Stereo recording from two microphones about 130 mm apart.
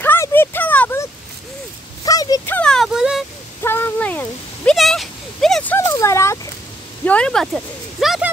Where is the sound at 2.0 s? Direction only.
30° left (ahead or behind).